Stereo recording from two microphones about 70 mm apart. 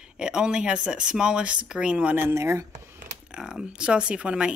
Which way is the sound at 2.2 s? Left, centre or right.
Right.